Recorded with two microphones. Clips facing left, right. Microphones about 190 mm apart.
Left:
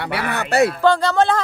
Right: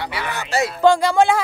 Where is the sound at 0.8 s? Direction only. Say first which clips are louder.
Right 1 dB; 10° right (ahead or behind).